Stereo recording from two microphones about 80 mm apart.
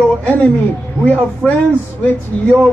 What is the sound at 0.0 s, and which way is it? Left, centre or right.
A woman's voice, centre.